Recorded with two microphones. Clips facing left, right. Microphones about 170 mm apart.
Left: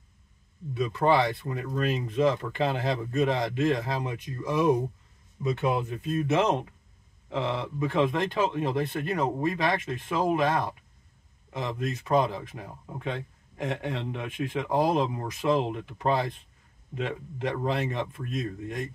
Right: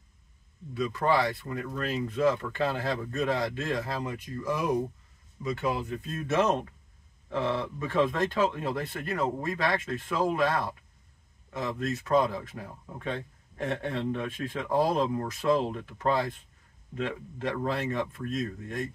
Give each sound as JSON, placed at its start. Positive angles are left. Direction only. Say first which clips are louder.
{"t": 0.7, "sound": "speech", "louder": "left 3 dB", "side_deg": 20}